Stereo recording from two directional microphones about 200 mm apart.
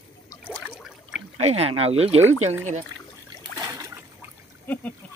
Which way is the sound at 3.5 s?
15° right (ahead or behind).